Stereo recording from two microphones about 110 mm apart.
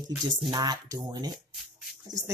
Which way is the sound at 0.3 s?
40° right (ahead or behind).